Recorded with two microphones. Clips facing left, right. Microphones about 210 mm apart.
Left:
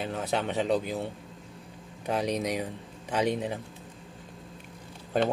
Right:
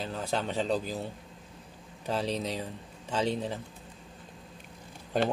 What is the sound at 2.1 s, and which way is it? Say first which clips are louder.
Speech: left 3 dB; 15° left (ahead or behind).